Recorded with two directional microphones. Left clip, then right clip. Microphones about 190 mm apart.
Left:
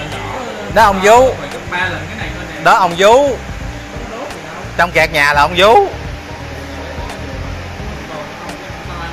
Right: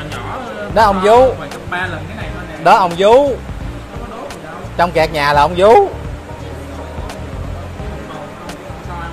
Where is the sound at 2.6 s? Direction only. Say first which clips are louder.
Left 1 dB; 20° right (ahead or behind).